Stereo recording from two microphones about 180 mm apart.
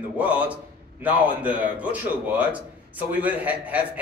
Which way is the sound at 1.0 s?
10° right (ahead or behind).